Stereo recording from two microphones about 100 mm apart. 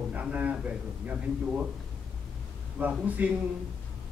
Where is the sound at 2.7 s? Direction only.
15° right (ahead or behind).